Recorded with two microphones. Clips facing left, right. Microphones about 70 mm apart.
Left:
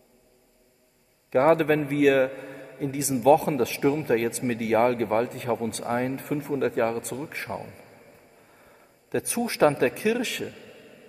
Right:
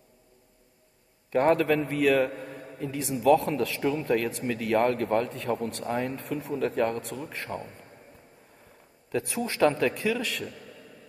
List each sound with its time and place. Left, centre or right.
1.3 s a man's voice: left
2.1 s a man's voice: left
2.8 s a man's voice: left
9.4 s a man's voice: left